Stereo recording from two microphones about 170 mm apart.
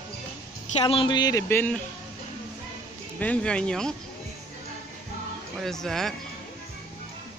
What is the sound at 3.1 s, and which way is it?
Speech, 10° left (ahead or behind).